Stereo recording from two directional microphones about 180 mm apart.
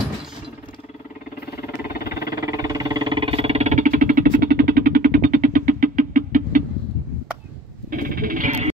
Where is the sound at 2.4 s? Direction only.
20° right (ahead or behind); by 6.6 s 50° right (ahead or behind).